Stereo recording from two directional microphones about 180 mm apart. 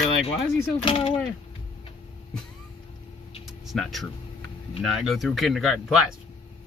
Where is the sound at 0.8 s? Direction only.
30° left (ahead or behind).